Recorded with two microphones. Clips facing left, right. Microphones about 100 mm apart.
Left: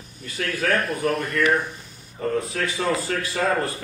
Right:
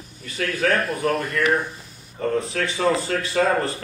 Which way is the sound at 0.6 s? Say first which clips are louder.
Right 1 dB; 25° right (ahead or behind).